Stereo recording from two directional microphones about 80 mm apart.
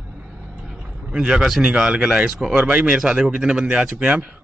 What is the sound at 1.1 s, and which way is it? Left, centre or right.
A man's voice, centre.